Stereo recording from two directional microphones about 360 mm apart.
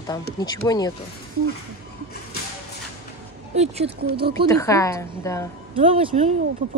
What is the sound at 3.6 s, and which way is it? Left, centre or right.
Speech, centre.